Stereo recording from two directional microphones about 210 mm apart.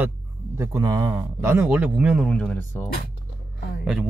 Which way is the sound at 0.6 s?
15° right (ahead or behind).